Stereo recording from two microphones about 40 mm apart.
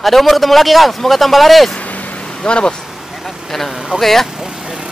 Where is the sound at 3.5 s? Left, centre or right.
Centre.